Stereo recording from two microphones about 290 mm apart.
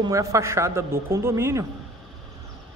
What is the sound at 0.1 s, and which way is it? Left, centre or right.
A man's voice, centre.